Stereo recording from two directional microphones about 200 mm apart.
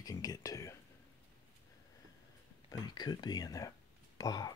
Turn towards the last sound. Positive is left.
turn(degrees=20)  # may be behind; listen again after turning